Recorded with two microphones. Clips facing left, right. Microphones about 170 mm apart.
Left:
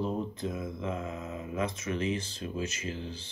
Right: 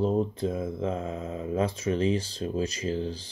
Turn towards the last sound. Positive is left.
turn(degrees=-35)  # may be behind; listen again after turning